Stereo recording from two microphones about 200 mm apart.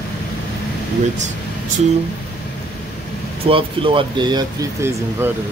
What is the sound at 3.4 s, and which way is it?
Speech, 25° right (ahead or behind).